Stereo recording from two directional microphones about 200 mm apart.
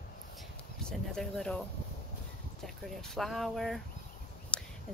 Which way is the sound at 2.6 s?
Centre (ahead or behind).